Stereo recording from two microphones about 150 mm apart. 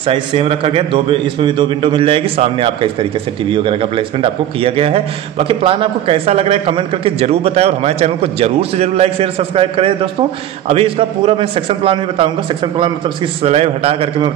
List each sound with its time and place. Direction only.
0.0 s a man's voice: 35° right (ahead or behind)